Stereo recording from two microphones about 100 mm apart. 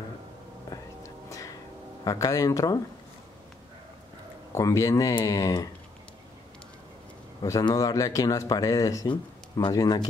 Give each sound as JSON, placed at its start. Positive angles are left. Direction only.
{"t": 0.7, "sound": "whispering", "side_deg": 30}
{"t": 2.0, "sound": "speech", "side_deg": 35}
{"t": 4.5, "sound": "speech", "side_deg": 30}
{"t": 7.6, "sound": "speech", "side_deg": 35}
{"t": 9.0, "sound": "speech", "side_deg": 50}